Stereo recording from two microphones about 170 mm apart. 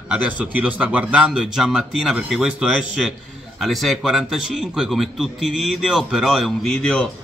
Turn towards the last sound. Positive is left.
turn(degrees=5)  # may be behind; listen again after turning